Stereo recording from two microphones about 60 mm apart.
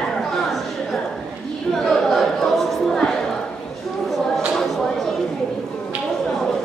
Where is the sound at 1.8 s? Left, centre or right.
Centre.